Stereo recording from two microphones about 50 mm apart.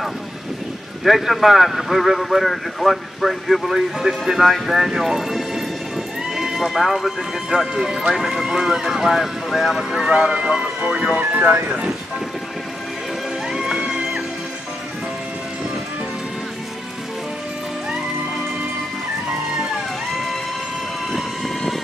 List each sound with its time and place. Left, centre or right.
1.0 s speech: centre
11.1 s speech: right
13.5 s music: centre
21.1 s vehicle: centre